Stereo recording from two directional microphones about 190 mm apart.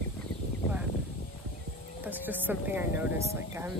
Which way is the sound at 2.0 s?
10° right (ahead or behind).